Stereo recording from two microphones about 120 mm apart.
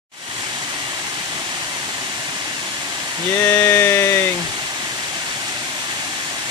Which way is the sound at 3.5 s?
20° left (ahead or behind).